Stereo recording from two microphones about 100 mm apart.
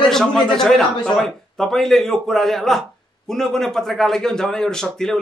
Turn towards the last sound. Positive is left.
turn(degrees=5)  # may be behind; listen again after turning